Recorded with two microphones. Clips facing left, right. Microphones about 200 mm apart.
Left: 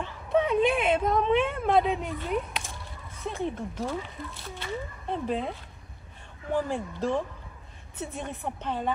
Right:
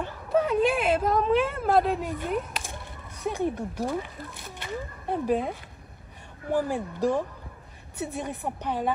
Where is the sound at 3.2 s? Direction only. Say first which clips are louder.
Right 4 dB; 15° right (ahead or behind).